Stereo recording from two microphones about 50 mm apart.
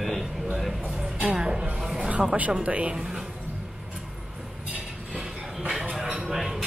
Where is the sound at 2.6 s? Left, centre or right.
Right.